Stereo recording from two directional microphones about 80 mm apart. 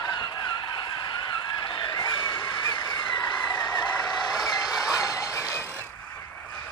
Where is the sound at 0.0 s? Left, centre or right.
Left.